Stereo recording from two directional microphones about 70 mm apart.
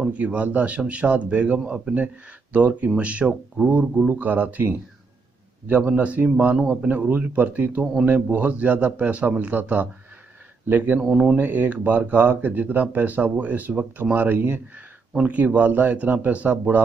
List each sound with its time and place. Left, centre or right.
0.0 s speech: centre
11.0 s speech: centre
11.3 s speech: right